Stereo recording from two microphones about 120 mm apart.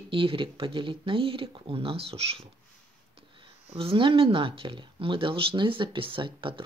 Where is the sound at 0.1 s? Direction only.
50° right (ahead or behind).